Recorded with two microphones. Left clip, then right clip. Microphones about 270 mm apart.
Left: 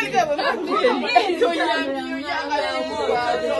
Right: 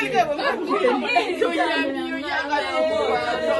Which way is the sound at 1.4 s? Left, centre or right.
Left.